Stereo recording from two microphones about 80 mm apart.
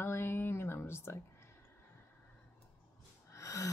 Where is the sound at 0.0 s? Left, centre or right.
Left.